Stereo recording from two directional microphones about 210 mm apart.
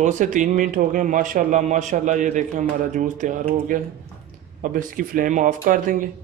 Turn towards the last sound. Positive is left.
turn(degrees=-40)  # may be behind; listen again after turning